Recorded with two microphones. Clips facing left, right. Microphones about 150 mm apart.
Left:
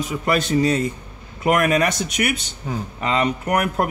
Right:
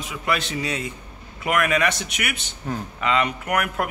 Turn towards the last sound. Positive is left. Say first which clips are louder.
# left 4 dB
turn(degrees=35)  # may be behind; listen again after turning